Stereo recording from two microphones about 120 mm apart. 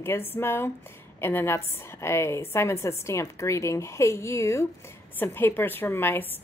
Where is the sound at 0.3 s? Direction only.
20° left (ahead or behind).